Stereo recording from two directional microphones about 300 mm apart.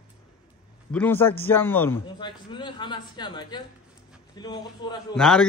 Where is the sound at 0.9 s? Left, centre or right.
Centre.